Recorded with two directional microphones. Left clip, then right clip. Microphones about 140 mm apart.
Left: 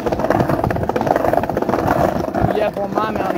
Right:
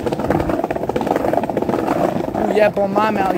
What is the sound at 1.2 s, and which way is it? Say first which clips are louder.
Vehicle: left 1 dB; 80° left.